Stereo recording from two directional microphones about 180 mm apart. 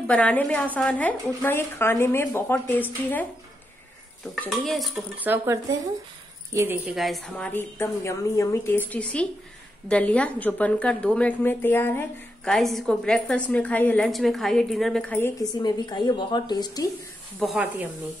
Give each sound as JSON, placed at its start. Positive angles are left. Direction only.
{"t": 0.0, "sound": "a woman's voice", "side_deg": 10}
{"t": 4.5, "sound": "a woman's voice", "side_deg": 0}
{"t": 5.3, "sound": "speech", "side_deg": -15}
{"t": 6.9, "sound": "a woman's voice", "side_deg": 0}
{"t": 12.5, "sound": "a woman's voice", "side_deg": 0}
{"t": 15.6, "sound": "a woman's voice", "side_deg": 25}
{"t": 17.4, "sound": "a woman's voice", "side_deg": -5}